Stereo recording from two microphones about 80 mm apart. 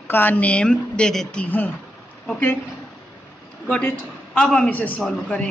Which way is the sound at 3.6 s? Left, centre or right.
Centre.